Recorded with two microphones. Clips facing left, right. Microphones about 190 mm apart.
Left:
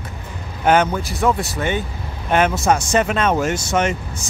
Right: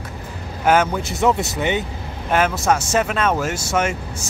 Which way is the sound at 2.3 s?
Centre (ahead or behind).